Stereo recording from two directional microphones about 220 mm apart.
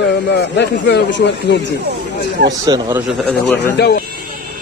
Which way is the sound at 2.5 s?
15° right (ahead or behind).